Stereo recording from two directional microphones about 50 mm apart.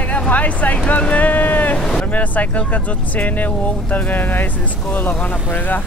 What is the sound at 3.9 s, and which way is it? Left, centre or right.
Speech, left.